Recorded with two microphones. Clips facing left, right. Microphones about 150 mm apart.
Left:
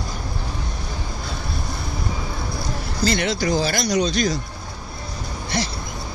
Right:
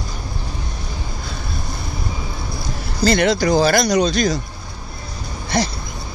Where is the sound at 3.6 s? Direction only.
90° right.